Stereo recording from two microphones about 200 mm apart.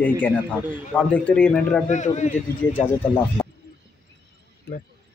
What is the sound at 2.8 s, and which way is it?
Speech, 10° left (ahead or behind).